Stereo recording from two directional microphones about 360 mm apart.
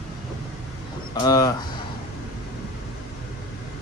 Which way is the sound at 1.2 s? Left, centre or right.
Centre.